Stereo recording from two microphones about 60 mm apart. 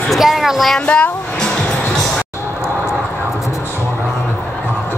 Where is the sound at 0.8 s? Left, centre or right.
Centre.